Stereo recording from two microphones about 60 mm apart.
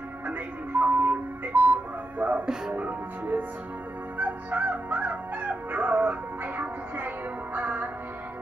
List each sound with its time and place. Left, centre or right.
0.3 s music: right